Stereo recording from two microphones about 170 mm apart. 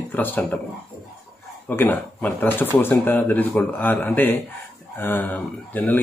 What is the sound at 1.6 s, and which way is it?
Speech, 10° left (ahead or behind).